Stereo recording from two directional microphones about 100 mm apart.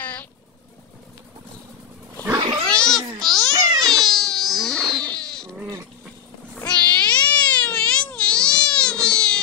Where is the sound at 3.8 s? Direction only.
5° left (ahead or behind).